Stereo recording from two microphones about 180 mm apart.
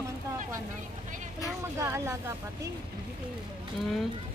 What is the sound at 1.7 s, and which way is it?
Speech, 15° right (ahead or behind).